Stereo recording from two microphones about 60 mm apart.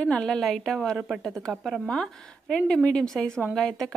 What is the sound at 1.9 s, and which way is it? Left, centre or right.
A woman's voice, centre.